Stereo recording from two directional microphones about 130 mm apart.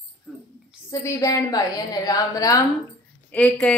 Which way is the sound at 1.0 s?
25° left (ahead or behind).